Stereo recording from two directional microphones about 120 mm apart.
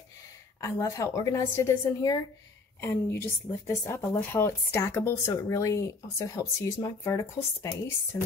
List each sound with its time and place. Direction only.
0.6 s speech: 25° left (ahead or behind)